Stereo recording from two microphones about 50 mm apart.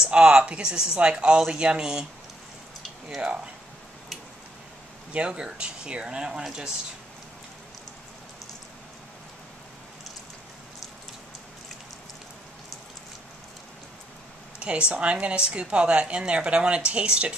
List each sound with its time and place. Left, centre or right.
0.0 s speech: centre
5.1 s speech: right
14.6 s a woman's voice: right